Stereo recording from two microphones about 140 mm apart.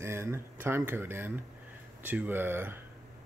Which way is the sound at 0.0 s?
20° right (ahead or behind).